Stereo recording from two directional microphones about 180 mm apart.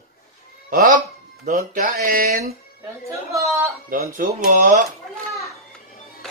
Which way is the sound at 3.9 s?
50° right (ahead or behind).